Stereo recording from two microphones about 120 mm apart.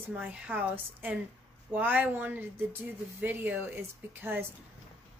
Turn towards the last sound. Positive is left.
turn(degrees=-20)  # may be behind; listen again after turning